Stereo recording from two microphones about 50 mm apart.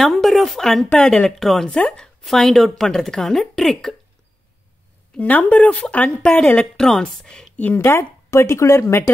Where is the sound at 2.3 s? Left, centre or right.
Centre.